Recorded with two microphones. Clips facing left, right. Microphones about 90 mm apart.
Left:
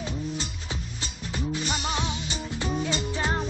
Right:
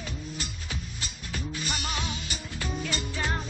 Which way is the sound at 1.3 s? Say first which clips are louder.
Left 5 dB; 20° left (ahead or behind).